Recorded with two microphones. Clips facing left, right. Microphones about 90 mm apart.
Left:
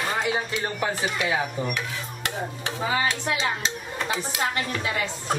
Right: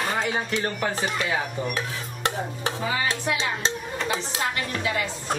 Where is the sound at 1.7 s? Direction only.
35° right (ahead or behind).